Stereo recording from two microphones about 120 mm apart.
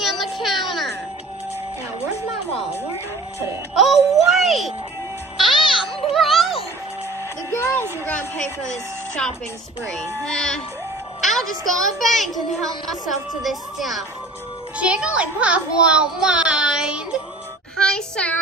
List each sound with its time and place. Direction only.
0.0 s music: centre (ahead or behind)
3.8 s a child's voice: centre (ahead or behind)
5.4 s music: centre (ahead or behind)
7.5 s a child's voice: 20° left (ahead or behind)
10.2 s a child's voice: 5° left (ahead or behind)
17.7 s child singing: 5° left (ahead or behind)